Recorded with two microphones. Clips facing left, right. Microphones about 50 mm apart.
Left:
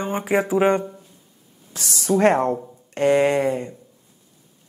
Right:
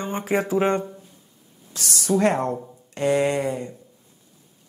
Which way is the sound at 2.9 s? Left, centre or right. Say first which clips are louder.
Left 4 dB; left.